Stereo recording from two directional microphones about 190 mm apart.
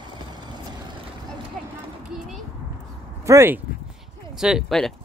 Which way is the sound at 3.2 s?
15° right (ahead or behind).